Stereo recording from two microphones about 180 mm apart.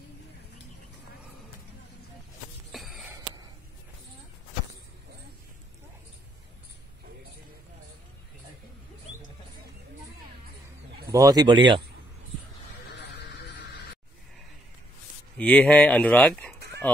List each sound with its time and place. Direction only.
2.7 s music: centre (ahead or behind)
11.1 s speech: 20° right (ahead or behind)
12.9 s a sound: 70° left (ahead or behind)
15.3 s speech: 5° left (ahead or behind)